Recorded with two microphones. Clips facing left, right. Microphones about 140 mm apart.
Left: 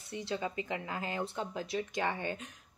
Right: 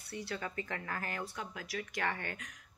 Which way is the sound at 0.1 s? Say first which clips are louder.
Left 4 dB; 20° left (ahead or behind).